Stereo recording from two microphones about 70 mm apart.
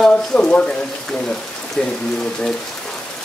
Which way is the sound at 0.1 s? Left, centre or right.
Centre.